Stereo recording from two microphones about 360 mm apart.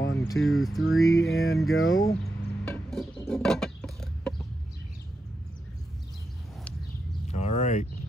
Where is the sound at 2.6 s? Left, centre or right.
Centre.